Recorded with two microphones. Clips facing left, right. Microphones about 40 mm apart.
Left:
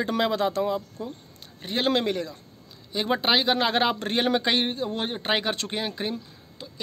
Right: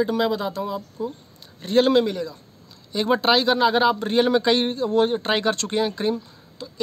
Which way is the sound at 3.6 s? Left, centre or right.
Left.